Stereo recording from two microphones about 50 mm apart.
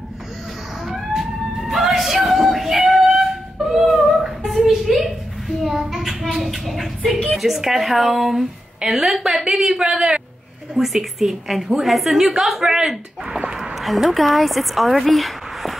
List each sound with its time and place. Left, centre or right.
0.8 s music: centre
1.7 s a sound: centre
5.6 s child singing: centre
7.2 s a woman's voice: centre
10.7 s a woman's voice: centre
13.6 s speech: centre